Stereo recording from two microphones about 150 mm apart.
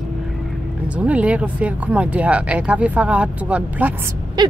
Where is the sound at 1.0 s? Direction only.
10° right (ahead or behind).